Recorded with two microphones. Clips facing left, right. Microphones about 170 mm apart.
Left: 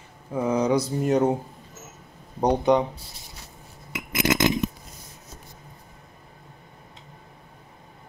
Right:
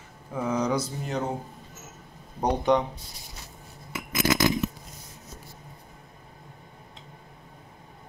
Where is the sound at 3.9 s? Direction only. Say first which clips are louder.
Left 1 dB; 60° left (ahead or behind).